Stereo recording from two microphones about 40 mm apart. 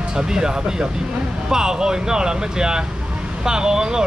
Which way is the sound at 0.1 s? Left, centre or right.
Centre.